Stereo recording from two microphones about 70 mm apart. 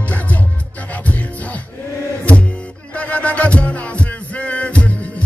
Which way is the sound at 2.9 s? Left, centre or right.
Centre.